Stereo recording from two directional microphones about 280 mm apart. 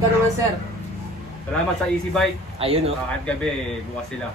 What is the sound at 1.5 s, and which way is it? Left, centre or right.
Speech, centre.